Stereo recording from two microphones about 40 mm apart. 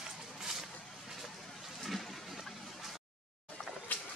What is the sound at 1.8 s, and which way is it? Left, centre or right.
Toilet flush, centre.